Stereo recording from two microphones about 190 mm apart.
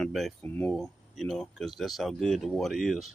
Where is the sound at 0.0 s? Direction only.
Centre (ahead or behind).